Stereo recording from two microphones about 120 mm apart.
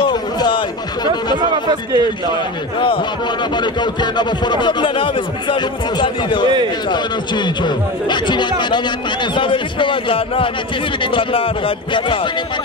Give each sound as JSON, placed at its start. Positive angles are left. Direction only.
{"t": 0.0, "sound": "music", "side_deg": 40}
{"t": 1.5, "sound": "a man's voice", "side_deg": -40}
{"t": 3.5, "sound": "speech", "side_deg": 40}